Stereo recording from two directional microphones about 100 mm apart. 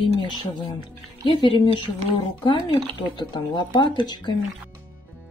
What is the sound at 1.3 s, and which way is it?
Speech, 55° left (ahead or behind).